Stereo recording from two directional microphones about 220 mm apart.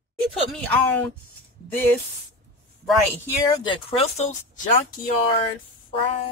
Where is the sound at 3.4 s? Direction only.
20° left (ahead or behind).